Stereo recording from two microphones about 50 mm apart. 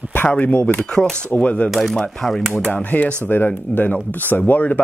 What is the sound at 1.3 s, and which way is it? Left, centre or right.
Speech, left.